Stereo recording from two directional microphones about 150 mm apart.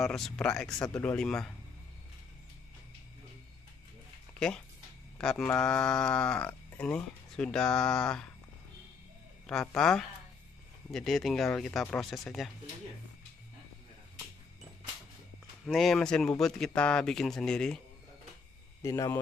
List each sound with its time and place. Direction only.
0.0 s speech: 5° left (ahead or behind)
5.2 s speech: 5° left (ahead or behind)
9.5 s speech: 5° left (ahead or behind)
15.6 s speech: centre (ahead or behind)
18.8 s speech: 20° left (ahead or behind)